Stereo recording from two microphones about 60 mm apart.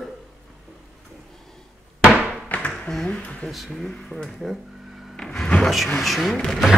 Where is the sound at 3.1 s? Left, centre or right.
Left.